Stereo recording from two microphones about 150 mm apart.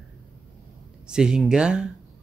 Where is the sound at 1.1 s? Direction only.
5° right (ahead or behind).